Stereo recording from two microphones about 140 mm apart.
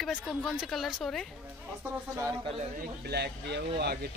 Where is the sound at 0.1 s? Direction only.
Centre (ahead or behind).